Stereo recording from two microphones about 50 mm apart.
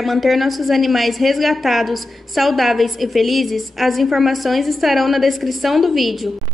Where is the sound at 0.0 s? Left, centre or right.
Centre.